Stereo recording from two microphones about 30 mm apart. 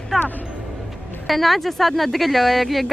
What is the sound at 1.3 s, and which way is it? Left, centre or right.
Speech, centre.